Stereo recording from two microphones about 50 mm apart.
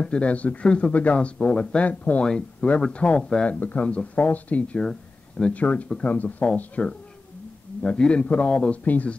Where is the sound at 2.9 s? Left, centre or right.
Left.